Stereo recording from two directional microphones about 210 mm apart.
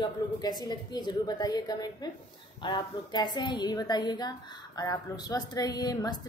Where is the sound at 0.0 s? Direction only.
20° left (ahead or behind).